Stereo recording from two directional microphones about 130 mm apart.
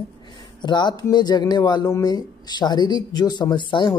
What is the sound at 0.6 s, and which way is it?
Speech, 35° left (ahead or behind).